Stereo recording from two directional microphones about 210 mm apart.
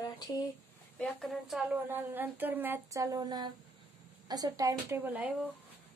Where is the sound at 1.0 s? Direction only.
Centre (ahead or behind).